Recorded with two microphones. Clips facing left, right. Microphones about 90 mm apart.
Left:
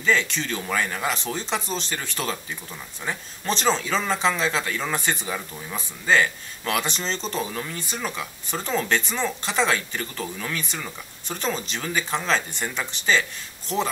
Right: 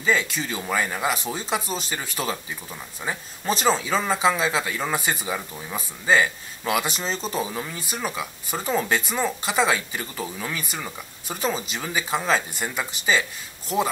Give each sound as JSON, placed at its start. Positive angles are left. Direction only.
{"t": 0.0, "sound": "speech", "side_deg": -5}